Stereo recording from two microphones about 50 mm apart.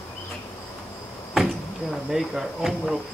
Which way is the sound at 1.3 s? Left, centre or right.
Centre.